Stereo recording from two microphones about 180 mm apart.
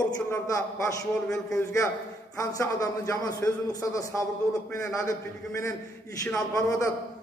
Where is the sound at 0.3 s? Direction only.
15° left (ahead or behind).